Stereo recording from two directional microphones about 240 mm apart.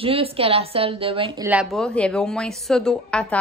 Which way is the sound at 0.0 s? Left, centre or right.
Right.